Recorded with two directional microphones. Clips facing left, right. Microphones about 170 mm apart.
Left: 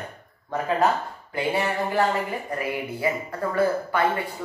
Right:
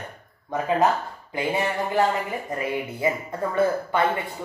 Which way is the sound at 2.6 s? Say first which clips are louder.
Right 2 dB; 25° right (ahead or behind).